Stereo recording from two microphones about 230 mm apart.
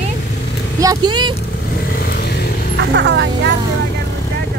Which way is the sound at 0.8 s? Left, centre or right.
Centre.